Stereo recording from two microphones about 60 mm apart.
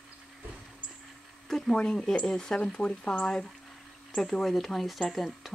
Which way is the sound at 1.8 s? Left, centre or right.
Centre.